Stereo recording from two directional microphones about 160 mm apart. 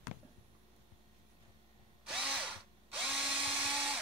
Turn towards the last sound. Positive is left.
turn(degrees=-5)  # may be behind; listen again after turning